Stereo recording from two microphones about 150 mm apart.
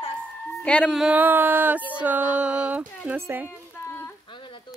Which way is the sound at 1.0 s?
10° right (ahead or behind).